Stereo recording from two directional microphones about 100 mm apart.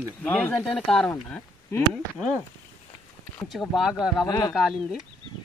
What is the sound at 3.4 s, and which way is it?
Speech, centre (ahead or behind).